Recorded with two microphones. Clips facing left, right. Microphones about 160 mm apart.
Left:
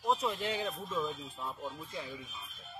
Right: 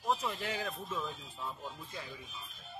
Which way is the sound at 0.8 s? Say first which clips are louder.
Left 4 dB; centre (ahead or behind).